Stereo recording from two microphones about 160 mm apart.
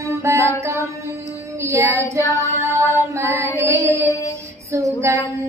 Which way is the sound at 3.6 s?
20° right (ahead or behind).